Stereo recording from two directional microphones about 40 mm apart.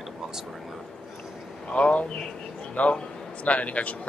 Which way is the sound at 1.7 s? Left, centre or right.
Left.